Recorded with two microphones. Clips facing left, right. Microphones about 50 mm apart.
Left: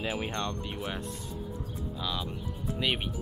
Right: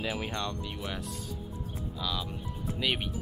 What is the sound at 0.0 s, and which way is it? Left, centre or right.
Speech, centre.